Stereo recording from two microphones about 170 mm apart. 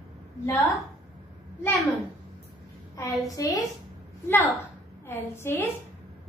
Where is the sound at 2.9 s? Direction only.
20° left (ahead or behind).